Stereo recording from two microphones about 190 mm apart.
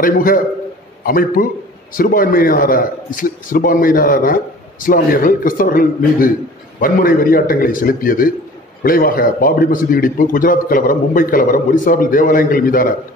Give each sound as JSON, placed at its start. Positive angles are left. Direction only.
{"t": 0.0, "sound": "a man's voice", "side_deg": 50}